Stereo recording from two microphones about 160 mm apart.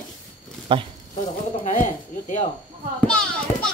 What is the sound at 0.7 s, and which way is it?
Speech, 30° right (ahead or behind).